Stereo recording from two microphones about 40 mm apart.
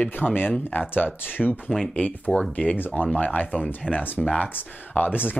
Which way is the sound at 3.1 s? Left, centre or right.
Left.